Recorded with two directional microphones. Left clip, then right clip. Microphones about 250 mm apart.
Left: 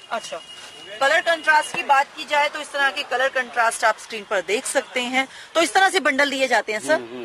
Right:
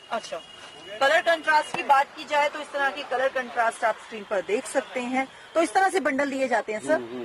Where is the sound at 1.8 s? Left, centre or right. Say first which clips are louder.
Left 2 dB; centre.